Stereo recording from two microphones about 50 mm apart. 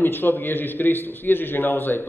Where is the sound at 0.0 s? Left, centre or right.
Left.